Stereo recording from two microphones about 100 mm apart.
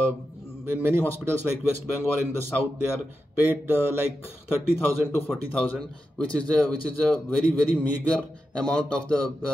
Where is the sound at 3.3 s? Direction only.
20° right (ahead or behind).